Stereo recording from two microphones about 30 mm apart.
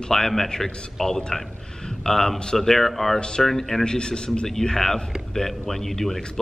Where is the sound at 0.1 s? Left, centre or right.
Centre.